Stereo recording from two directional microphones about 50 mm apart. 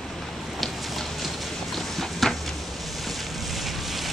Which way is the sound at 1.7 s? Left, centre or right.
Centre.